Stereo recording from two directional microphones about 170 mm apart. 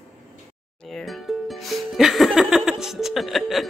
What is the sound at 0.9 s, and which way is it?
Music, centre (ahead or behind).